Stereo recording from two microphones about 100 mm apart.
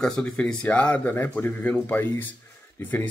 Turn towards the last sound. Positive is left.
turn(degrees=20)  # may be behind; listen again after turning